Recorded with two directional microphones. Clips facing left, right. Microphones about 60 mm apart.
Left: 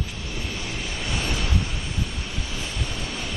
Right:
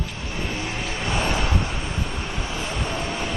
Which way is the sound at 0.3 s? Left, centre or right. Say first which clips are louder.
Right 5 dB; right.